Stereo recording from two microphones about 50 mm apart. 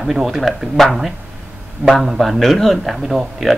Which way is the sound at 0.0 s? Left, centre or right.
Centre.